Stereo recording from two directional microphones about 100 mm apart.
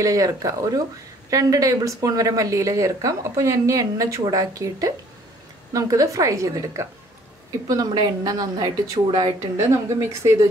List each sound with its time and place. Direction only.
0.0 s a woman's voice: 35° right (ahead or behind)
9.0 s speech: 60° right (ahead or behind)
9.6 s a woman's voice: 30° right (ahead or behind)